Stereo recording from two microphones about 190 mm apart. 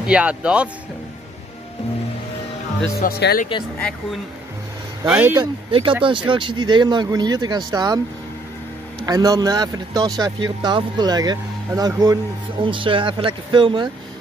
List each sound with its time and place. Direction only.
0.0 s speech: 5° right (ahead or behind)
3.0 s speech: 55° left (ahead or behind)
5.0 s speech: 5° right (ahead or behind)
5.3 s speech: 25° right (ahead or behind)
9.0 s speech: 20° right (ahead or behind)